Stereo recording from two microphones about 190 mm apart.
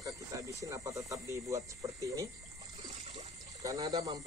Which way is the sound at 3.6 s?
20° right (ahead or behind).